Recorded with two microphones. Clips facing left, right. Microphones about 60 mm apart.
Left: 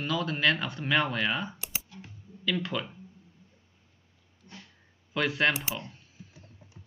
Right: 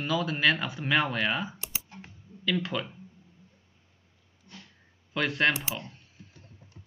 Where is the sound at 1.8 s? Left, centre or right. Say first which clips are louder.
Right 1 dB; right.